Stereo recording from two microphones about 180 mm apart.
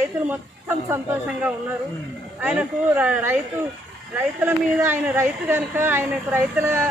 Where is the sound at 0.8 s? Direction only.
10° right (ahead or behind).